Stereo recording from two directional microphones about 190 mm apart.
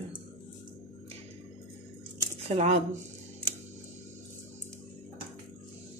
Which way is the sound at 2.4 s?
35° right (ahead or behind).